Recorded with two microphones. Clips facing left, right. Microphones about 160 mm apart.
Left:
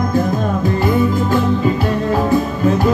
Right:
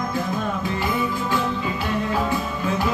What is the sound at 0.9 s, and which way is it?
Music, 45° left (ahead or behind).